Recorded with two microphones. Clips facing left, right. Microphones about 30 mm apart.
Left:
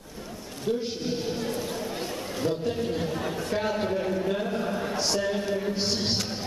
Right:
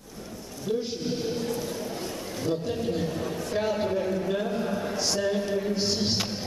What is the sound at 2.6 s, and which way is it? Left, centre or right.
A man's voice, centre.